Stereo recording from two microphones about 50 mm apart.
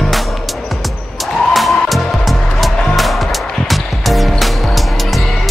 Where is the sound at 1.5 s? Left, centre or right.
Centre.